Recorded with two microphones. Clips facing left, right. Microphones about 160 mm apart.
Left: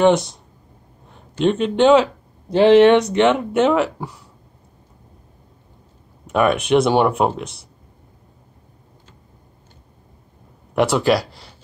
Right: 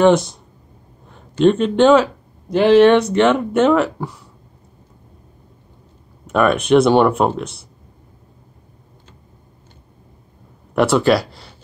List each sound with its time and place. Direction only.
0.0 s speech: 15° left (ahead or behind)
1.3 s speech: 15° left (ahead or behind)
6.3 s speech: 10° left (ahead or behind)
10.7 s speech: 15° left (ahead or behind)